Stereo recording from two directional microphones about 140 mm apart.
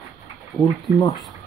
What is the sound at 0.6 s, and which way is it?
Speech, 25° left (ahead or behind).